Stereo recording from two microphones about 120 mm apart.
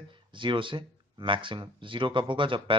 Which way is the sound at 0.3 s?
45° right (ahead or behind).